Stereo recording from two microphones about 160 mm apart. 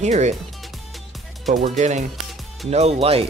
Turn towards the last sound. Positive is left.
turn(degrees=-40)  # may be behind; listen again after turning